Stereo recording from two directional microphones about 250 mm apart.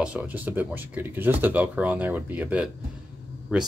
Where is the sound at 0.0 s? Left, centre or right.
Centre.